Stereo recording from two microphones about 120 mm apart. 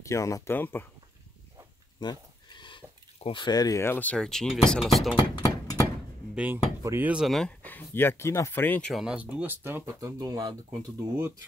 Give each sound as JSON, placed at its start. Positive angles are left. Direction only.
{"t": 0.0, "sound": "speech", "side_deg": 25}
{"t": 2.0, "sound": "a sound", "side_deg": 40}
{"t": 3.2, "sound": "speech", "side_deg": 45}
{"t": 3.8, "sound": "speech", "side_deg": 15}
{"t": 5.1, "sound": "music", "side_deg": 30}
{"t": 6.3, "sound": "speech", "side_deg": -10}
{"t": 6.8, "sound": "speech", "side_deg": -25}
{"t": 7.1, "sound": "speech", "side_deg": -5}
{"t": 7.6, "sound": "speech", "side_deg": 15}
{"t": 8.9, "sound": "speech", "side_deg": -10}
{"t": 9.9, "sound": "speech", "side_deg": -30}